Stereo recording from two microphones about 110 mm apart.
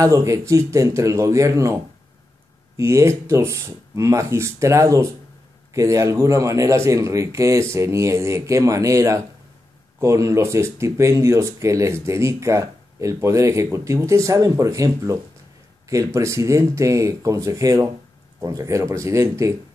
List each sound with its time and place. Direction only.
0.0 s speech: 30° right (ahead or behind)
2.8 s speech: 25° right (ahead or behind)